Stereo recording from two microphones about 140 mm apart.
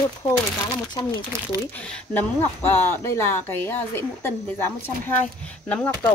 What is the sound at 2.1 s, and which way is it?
Speech, 15° left (ahead or behind).